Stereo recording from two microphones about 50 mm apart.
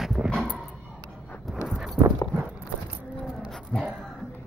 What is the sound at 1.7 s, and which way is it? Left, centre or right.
Clip-clop, centre.